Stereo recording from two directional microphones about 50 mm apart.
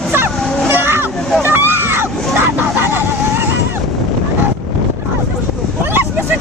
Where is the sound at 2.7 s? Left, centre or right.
Right.